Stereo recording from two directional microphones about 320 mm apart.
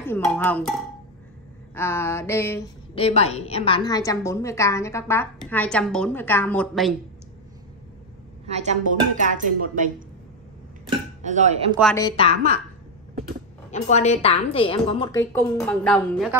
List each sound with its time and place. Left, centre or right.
0.0 s cowbell: centre
1.8 s a woman's voice: centre
3.0 s a woman's voice: centre
8.5 s a woman's voice: right
10.9 s speech: right
11.8 s a woman's voice: centre
13.7 s a woman's voice: left; by 16.3 s centre